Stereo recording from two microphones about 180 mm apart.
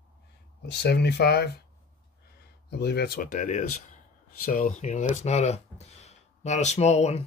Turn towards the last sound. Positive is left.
turn(degrees=40)  # may be behind; listen again after turning